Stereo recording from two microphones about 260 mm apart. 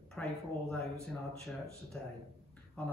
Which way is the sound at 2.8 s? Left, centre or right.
Centre.